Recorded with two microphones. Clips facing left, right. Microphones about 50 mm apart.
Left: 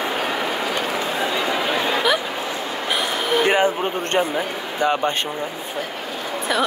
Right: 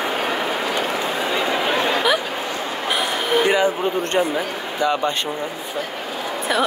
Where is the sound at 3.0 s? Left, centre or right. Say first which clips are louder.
Right 1 dB; centre.